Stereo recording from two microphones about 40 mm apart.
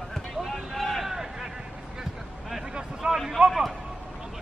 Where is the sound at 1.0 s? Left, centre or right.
Centre.